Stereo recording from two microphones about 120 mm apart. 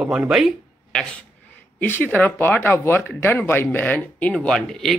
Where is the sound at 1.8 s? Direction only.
15° left (ahead or behind).